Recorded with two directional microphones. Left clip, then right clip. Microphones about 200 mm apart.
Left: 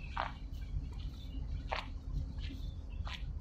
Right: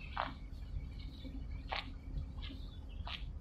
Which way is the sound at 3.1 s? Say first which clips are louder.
Right 1 dB; 20° left (ahead or behind).